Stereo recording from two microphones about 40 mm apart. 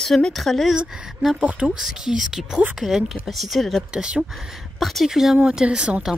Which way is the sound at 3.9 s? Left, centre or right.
Right.